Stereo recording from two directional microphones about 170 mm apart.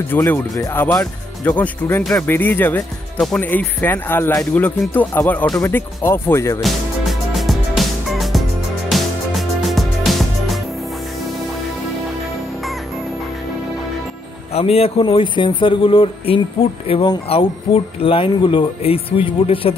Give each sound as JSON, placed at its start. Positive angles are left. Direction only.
{"t": 0.1, "sound": "speech", "side_deg": 15}
{"t": 6.6, "sound": "music", "side_deg": 0}
{"t": 14.5, "sound": "a man's voice", "side_deg": 35}